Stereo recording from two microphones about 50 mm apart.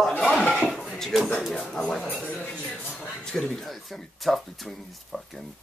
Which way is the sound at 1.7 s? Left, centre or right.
Centre.